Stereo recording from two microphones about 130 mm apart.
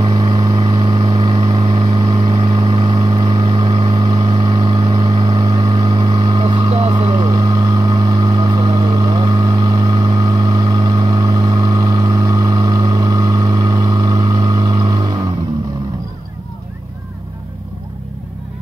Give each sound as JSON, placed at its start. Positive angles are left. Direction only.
{"t": 0.0, "sound": "vehicle", "side_deg": -30}